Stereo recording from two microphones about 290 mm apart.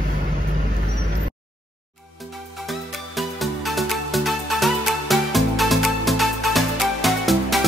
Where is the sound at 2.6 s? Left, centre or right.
Centre.